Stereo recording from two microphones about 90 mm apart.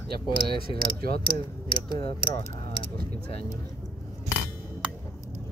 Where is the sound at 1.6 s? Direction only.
85° left.